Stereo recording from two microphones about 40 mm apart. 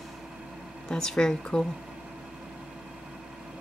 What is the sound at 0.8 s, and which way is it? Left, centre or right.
Speech, centre.